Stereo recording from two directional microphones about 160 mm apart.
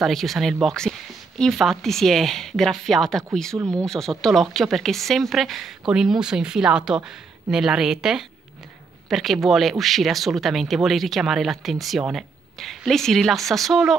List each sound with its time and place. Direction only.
0.0 s speech: centre (ahead or behind)
3.5 s speech: 20° right (ahead or behind)
3.8 s speech: 5° left (ahead or behind)